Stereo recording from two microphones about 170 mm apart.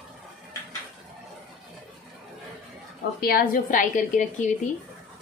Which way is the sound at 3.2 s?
60° left (ahead or behind).